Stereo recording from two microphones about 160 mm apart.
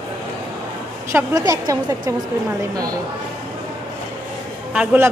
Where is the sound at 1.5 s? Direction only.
25° right (ahead or behind).